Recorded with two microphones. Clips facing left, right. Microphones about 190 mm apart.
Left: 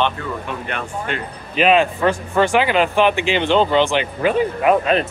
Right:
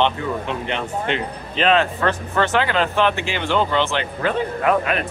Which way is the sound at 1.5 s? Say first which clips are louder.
Left 3 dB; 10° left (ahead or behind).